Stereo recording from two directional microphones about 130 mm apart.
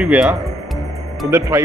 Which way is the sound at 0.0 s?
5° right (ahead or behind).